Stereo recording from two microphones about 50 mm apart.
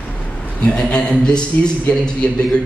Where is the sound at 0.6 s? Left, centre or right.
Left.